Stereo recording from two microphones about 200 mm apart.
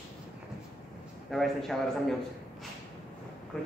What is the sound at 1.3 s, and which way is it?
Speech, centre (ahead or behind).